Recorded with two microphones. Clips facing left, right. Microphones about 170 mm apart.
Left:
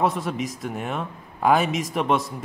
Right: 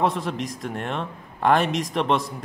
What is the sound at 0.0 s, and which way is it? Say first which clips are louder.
A man's voice: even; centre (ahead or behind).